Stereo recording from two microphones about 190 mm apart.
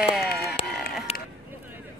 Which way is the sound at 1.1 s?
35° left (ahead or behind).